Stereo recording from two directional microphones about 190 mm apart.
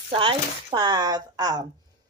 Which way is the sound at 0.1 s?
25° right (ahead or behind).